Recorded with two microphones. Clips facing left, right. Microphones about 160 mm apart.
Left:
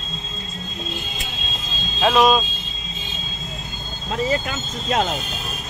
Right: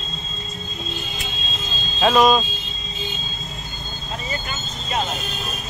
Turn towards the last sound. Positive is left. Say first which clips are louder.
# left 4 dB
turn(degrees=90)